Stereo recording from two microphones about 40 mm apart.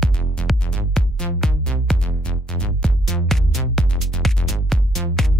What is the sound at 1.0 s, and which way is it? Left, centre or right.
Music, centre.